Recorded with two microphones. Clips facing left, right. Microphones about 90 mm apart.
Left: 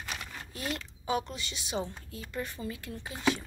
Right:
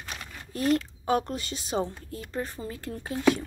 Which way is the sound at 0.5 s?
40° right (ahead or behind).